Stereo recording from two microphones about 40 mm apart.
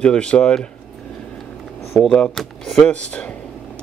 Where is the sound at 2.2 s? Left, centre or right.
Centre.